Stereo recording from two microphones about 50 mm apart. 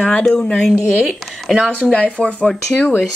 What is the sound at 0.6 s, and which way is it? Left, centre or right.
Speech, centre.